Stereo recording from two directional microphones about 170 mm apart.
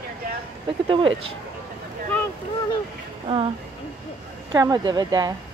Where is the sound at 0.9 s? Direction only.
30° right (ahead or behind).